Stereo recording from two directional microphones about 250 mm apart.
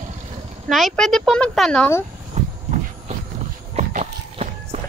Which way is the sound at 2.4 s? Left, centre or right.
Right.